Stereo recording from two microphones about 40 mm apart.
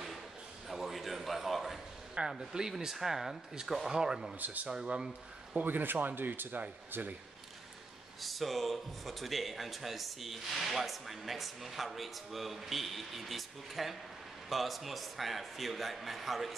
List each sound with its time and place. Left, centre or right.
0.7 s a sound: centre
2.2 s a sound: right
2.5 s speech: centre
3.9 s speech: centre
5.6 s speech: right
8.2 s speech: centre